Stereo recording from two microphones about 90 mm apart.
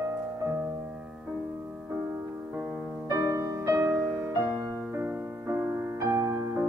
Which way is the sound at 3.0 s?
30° right (ahead or behind).